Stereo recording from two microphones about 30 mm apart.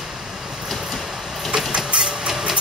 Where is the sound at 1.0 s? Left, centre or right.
Centre.